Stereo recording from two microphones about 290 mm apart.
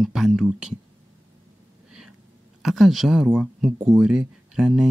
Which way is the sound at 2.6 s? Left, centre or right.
Centre.